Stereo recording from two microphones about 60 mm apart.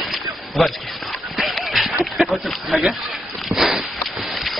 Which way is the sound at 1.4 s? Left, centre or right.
Centre.